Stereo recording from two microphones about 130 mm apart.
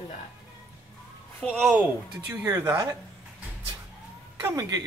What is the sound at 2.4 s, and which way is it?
Speech, 20° right (ahead or behind).